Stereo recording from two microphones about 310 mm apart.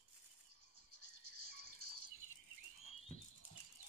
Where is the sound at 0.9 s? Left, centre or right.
Right.